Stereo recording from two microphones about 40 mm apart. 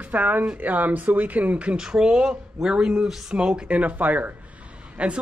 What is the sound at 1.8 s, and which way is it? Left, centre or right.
Speech, centre.